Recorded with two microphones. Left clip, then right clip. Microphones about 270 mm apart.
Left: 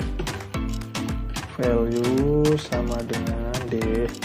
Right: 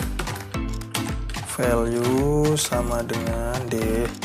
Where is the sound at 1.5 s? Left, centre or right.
Right.